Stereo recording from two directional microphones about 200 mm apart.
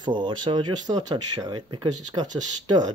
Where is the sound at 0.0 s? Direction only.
25° right (ahead or behind).